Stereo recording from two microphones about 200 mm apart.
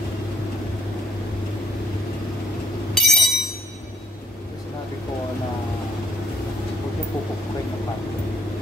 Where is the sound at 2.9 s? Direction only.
Centre (ahead or behind).